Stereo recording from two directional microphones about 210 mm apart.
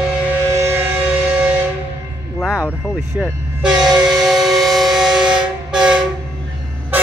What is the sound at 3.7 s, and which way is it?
Train, 20° right (ahead or behind).